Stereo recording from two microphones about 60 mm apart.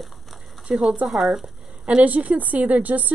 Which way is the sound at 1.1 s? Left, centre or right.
Centre.